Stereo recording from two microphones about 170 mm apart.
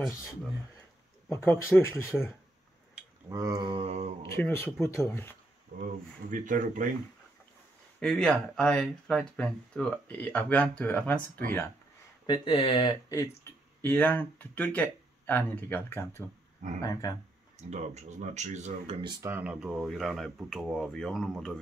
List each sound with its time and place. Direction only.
1.3 s speech: 15° left (ahead or behind)
3.3 s a sound: 20° right (ahead or behind); by 4.3 s 35° right (ahead or behind)
4.4 s speech: 10° left (ahead or behind)
6.3 s speech: 50° right (ahead or behind)
8.0 s speech: 5° left (ahead or behind)
12.3 s speech: 30° left (ahead or behind)
13.4 s speech: 10° left (ahead or behind)
17.6 s speech: 40° right (ahead or behind)
19.2 s speech: 10° right (ahead or behind)